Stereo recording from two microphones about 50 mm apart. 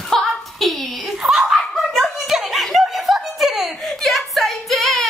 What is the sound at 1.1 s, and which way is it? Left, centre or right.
Speech, centre.